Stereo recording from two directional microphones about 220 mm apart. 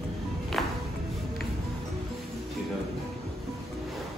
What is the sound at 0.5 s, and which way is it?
Music, centre (ahead or behind).